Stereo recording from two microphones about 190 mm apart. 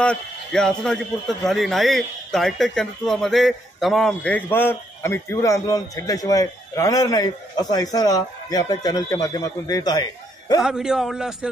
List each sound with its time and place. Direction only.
0.0 s a man's voice: 5° left (ahead or behind)
10.6 s speech: centre (ahead or behind)